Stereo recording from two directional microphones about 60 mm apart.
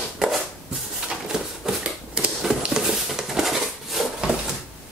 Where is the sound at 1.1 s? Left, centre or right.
Centre.